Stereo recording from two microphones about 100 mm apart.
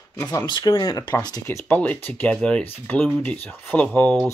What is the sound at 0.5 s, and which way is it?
Speech, 50° left (ahead or behind).